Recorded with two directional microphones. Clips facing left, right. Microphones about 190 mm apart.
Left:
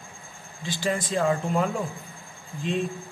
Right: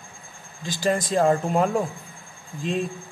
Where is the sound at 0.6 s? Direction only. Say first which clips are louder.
Right 4 dB; 40° right (ahead or behind).